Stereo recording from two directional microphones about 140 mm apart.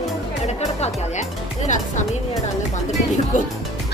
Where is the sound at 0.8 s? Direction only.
60° left (ahead or behind).